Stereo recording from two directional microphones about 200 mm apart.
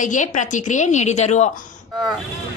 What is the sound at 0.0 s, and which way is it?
A woman's voice, 40° left (ahead or behind).